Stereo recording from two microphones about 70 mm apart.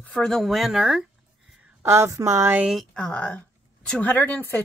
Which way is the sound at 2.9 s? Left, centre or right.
Centre.